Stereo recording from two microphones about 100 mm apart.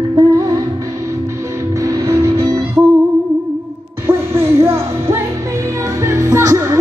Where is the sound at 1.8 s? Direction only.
30° right (ahead or behind).